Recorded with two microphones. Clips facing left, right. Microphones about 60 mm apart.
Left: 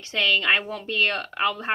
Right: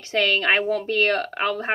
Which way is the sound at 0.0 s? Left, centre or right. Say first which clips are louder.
Right 2 dB; right.